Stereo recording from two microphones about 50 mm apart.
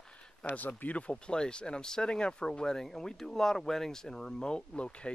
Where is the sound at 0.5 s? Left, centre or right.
Left.